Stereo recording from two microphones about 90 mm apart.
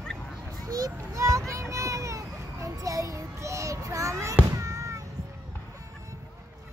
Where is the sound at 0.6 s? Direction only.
40° right (ahead or behind).